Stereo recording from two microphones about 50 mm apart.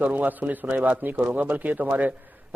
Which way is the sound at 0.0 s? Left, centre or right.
Right.